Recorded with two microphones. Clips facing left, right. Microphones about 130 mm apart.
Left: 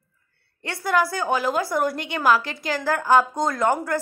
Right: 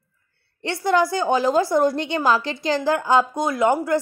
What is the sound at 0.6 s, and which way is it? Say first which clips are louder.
Speech: right 3 dB; 25° right (ahead or behind).